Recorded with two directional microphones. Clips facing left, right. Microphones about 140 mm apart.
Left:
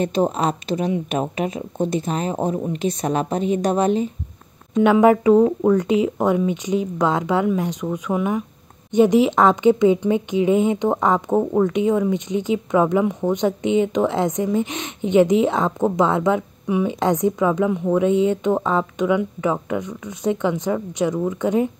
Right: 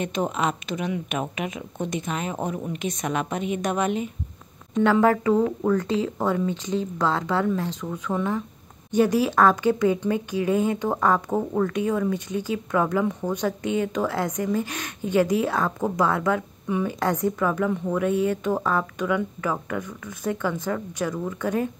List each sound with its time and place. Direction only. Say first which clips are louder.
0.0 s speech: left 5 dB; 35° left (ahead or behind)
4.8 s speech: left 5 dB; 15° left (ahead or behind)